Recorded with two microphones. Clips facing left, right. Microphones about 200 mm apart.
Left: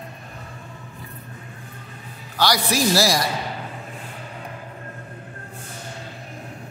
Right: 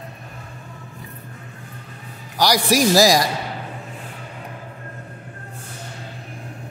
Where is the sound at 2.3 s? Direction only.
15° right (ahead or behind).